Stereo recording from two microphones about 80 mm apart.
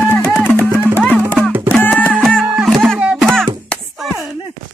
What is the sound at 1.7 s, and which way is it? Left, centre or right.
Music, centre.